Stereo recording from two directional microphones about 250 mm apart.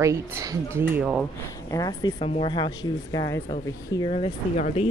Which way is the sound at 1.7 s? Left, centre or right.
Centre.